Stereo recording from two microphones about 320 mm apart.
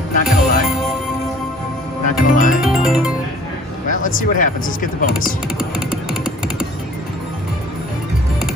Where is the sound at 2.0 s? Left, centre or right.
Left.